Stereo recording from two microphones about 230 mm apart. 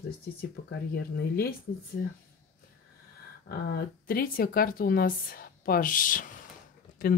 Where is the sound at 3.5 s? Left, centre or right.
Left.